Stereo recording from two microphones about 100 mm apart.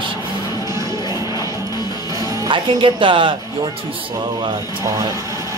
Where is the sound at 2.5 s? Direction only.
60° right (ahead or behind).